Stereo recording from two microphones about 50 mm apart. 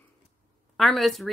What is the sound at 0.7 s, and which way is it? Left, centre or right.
Speech, centre.